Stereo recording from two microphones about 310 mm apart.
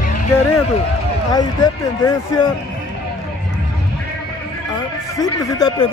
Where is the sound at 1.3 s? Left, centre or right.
Centre.